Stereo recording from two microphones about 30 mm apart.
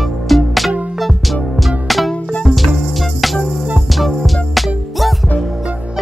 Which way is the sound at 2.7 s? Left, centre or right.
Centre.